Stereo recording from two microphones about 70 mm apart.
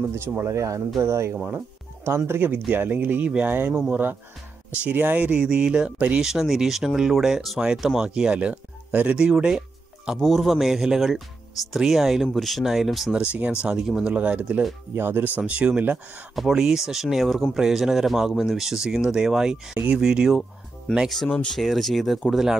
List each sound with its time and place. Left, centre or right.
0.0 s speech: right
1.3 s speech: right
2.0 s speech: right; by 10.1 s centre
10.1 s speech: centre
13.2 s speech: centre
15.0 s speech: right
15.3 s speech: centre
16.3 s speech: centre
21.5 s speech: centre